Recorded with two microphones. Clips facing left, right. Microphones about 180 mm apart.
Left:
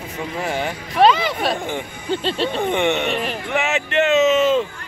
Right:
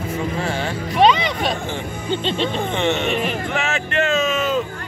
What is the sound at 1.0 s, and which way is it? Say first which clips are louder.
Music: left 1 dB; 5° left (ahead or behind).